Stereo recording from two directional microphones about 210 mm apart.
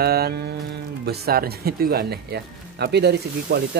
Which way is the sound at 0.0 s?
45° right (ahead or behind).